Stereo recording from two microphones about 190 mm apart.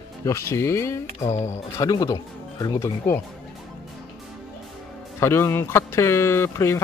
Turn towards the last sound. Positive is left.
turn(degrees=15)  # may be behind; listen again after turning